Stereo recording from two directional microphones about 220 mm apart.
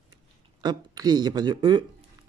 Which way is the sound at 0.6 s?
20° right (ahead or behind).